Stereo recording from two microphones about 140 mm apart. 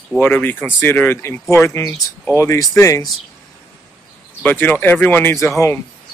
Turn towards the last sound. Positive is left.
turn(degrees=15)  # may be behind; listen again after turning